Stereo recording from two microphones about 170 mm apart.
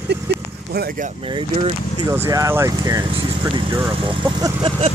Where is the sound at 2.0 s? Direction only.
15° right (ahead or behind).